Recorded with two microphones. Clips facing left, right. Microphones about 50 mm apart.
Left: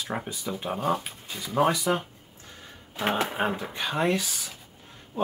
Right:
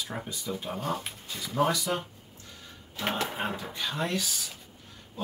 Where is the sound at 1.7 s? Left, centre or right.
Left.